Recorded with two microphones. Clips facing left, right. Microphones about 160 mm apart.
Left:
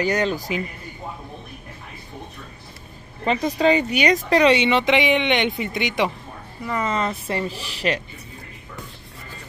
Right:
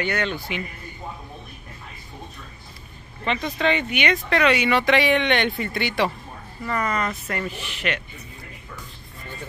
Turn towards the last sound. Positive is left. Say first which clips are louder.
# left 3 dB
turn(degrees=35)  # may be behind; listen again after turning